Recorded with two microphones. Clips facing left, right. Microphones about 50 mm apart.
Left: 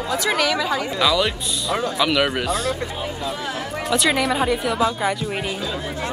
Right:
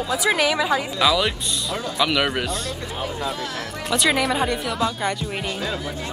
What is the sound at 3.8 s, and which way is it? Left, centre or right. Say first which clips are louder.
Speech: left 1 dB; centre.